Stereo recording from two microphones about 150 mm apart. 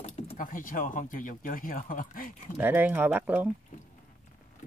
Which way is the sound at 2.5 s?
10° right (ahead or behind).